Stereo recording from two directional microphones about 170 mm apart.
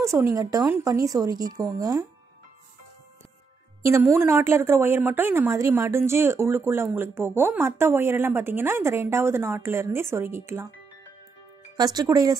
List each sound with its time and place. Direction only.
0.0 s a woman's voice: 15° right (ahead or behind)
4.2 s speech: 15° right (ahead or behind)
11.7 s a woman's voice: 20° right (ahead or behind)